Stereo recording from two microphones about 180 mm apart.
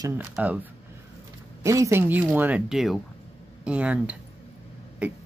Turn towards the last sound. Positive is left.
turn(degrees=-5)  # may be behind; listen again after turning